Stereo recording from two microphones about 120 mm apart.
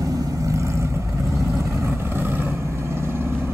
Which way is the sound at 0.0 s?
30° right (ahead or behind).